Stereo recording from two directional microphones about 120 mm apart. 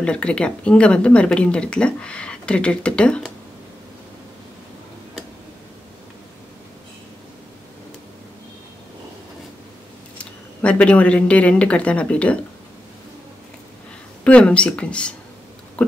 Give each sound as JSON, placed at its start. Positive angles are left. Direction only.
{"t": 0.0, "sound": "speech", "side_deg": 10}
{"t": 10.1, "sound": "speech", "side_deg": 10}
{"t": 14.2, "sound": "speech", "side_deg": 10}